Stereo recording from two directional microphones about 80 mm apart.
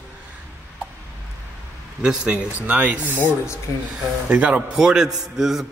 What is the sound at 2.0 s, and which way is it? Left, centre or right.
A man's voice, centre.